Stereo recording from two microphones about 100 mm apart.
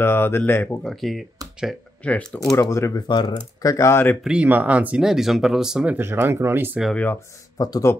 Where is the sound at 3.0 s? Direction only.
50° left (ahead or behind).